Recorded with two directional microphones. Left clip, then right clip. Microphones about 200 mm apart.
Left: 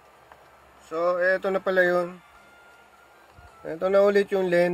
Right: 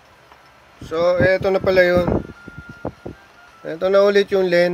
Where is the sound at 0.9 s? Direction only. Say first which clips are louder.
Right 7 dB; 10° right (ahead or behind).